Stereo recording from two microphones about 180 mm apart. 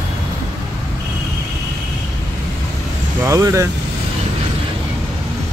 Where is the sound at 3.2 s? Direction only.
15° right (ahead or behind).